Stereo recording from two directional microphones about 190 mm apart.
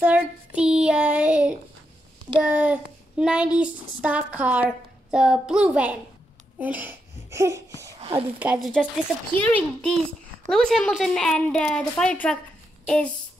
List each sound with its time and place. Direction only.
0.6 s child singing: 5° right (ahead or behind)
2.4 s a child's voice: 10° right (ahead or behind)
6.6 s laughter: 10° right (ahead or behind)
8.0 s a sound: 30° right (ahead or behind)
8.4 s a woman's voice: 5° right (ahead or behind)